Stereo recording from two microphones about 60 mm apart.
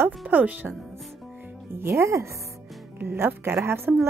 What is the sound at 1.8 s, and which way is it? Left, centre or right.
Speech, right.